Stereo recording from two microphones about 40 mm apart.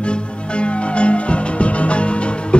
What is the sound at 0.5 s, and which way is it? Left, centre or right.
Music, left.